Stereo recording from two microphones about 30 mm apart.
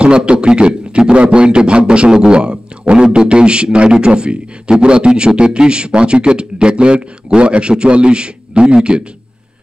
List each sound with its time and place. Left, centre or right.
0.0 s a man's voice: right